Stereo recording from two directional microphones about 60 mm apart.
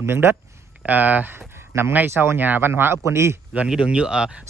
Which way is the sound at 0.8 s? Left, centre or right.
Right.